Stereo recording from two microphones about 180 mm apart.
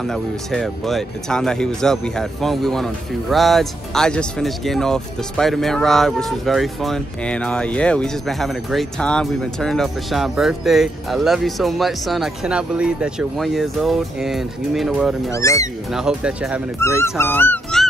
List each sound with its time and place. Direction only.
0.0 s speech: centre (ahead or behind)
15.3 s speech: 15° left (ahead or behind)
15.9 s speech: 5° right (ahead or behind)
16.8 s speech: 15° left (ahead or behind)